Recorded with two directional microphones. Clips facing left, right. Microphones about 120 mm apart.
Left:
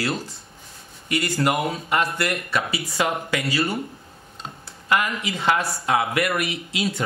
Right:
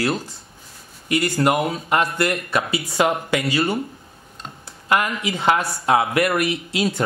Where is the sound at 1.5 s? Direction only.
25° right (ahead or behind).